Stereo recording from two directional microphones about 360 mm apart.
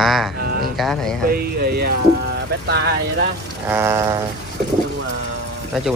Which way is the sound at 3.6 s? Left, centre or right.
Centre.